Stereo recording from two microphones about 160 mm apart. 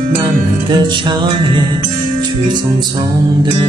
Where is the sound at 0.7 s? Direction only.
30° right (ahead or behind).